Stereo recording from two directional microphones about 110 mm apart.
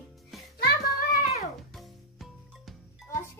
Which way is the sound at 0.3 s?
Centre (ahead or behind).